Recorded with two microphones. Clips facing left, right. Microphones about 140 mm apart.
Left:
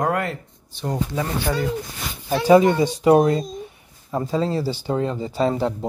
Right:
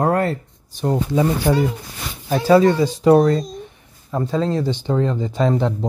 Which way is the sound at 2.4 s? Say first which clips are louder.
Right 1 dB; 20° left (ahead or behind).